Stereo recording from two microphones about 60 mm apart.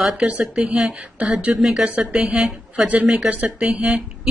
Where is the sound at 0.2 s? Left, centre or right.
Right.